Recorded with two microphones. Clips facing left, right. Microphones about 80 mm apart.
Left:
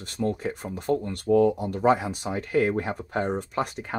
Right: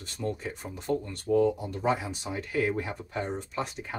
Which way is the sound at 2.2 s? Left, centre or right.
Left.